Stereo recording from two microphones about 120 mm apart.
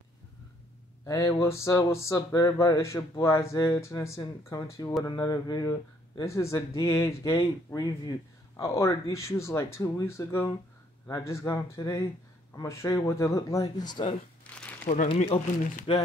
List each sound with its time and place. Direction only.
1.0 s speech: 25° left (ahead or behind)
14.5 s crumpling: 10° left (ahead or behind)
15.3 s speech: 55° left (ahead or behind)